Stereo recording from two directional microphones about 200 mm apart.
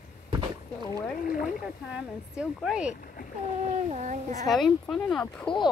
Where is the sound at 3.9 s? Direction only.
35° right (ahead or behind).